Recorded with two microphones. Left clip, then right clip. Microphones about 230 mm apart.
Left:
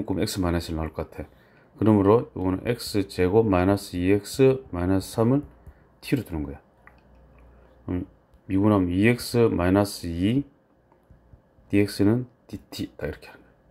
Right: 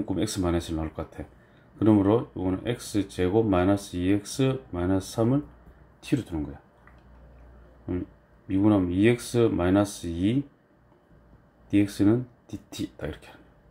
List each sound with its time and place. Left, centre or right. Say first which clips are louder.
0.1 s speech: left 2 dB; left
8.5 s speech: left 1 dB; left
11.7 s speech: left 1 dB; left